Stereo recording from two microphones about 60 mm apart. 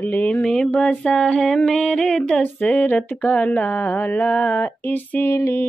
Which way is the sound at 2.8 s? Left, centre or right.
Left.